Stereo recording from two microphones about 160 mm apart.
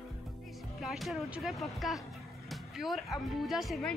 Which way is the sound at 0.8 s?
Centre (ahead or behind).